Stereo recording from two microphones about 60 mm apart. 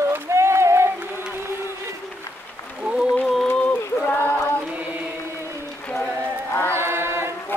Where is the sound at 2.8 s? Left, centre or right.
Centre.